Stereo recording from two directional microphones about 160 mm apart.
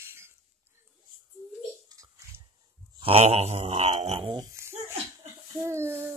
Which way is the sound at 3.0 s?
40° right (ahead or behind).